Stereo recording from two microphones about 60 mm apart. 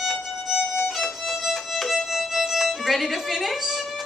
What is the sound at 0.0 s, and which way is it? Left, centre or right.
Violin, centre.